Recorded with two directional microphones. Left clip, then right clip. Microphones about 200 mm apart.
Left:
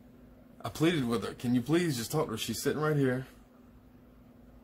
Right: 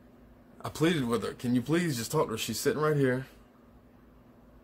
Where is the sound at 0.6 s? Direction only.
15° right (ahead or behind).